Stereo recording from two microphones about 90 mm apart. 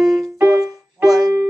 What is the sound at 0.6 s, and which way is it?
Music, 5° right (ahead or behind).